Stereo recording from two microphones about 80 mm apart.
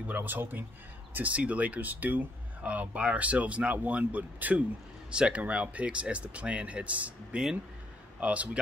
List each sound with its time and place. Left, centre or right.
0.0 s speech: right